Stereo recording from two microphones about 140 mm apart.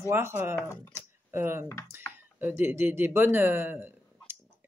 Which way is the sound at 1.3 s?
15° right (ahead or behind).